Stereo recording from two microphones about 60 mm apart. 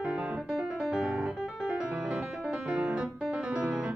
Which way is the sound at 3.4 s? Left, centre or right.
Centre.